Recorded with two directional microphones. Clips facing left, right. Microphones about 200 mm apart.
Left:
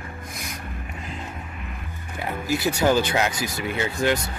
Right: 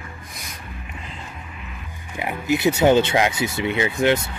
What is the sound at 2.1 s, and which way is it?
Speech, 15° right (ahead or behind).